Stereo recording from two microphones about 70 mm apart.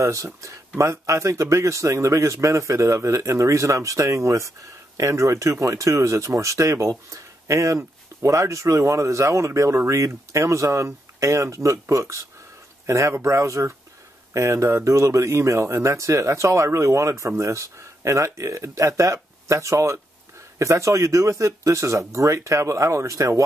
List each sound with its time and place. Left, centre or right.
0.0 s speech: right